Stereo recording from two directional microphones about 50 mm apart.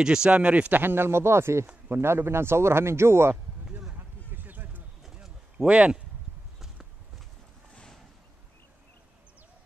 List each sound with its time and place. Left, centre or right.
0.0 s speech: centre
0.7 s speech: right
1.9 s speech: right
4.3 s a sound: right
5.0 s a sound: centre
5.7 s speech: right